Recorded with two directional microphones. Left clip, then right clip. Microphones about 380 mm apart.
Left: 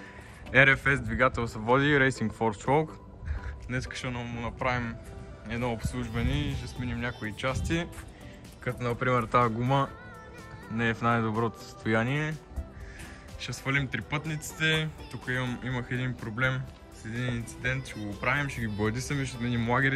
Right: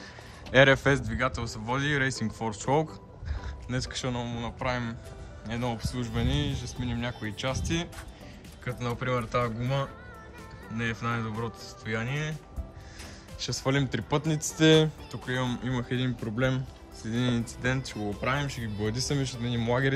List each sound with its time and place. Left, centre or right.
0.5 s speech: centre
13.4 s speech: centre